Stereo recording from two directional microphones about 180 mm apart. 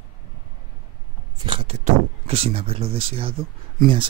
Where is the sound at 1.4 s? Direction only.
30° right (ahead or behind).